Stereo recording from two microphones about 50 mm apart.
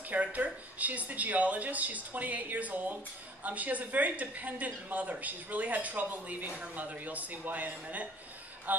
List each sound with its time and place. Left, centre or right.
0.1 s a woman's voice: right